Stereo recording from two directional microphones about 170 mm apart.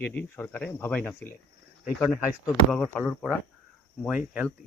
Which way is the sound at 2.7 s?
10° left (ahead or behind).